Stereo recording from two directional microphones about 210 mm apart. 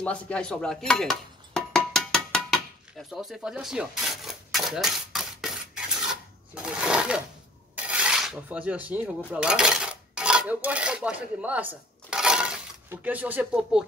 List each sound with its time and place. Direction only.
0.0 s dishes: 5° left (ahead or behind)
6.5 s speech: 5° right (ahead or behind)